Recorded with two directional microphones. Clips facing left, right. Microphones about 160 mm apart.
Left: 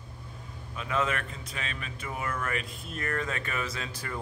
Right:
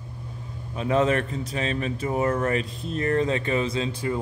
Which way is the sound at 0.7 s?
35° right (ahead or behind).